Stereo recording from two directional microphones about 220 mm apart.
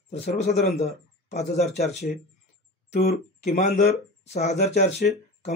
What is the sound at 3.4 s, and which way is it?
Speech, 35° left (ahead or behind).